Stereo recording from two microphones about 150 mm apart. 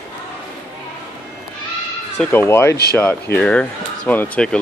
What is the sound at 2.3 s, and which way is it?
Speech, 15° left (ahead or behind).